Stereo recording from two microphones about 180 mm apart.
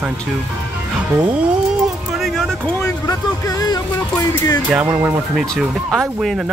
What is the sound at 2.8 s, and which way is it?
Speech, 20° left (ahead or behind).